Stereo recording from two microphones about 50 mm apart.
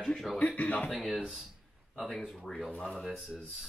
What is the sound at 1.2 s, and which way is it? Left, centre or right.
Speech, centre.